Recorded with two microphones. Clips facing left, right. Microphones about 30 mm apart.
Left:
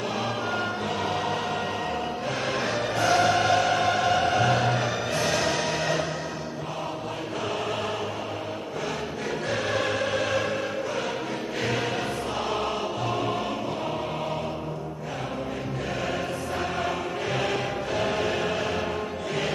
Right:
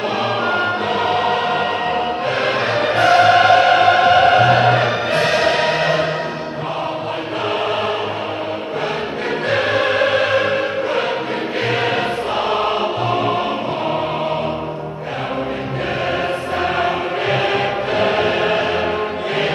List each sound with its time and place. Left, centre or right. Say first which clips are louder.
0.5 s music: right 10 dB; right
9.5 s music: right 10 dB; right
11.6 s choir: right 9 dB; right
16.6 s music: right 11 dB; right